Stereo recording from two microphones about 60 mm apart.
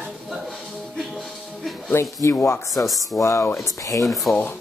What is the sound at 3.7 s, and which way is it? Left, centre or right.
Speech, left.